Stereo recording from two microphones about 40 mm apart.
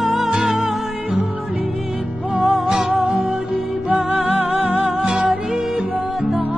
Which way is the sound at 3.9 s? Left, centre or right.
Right.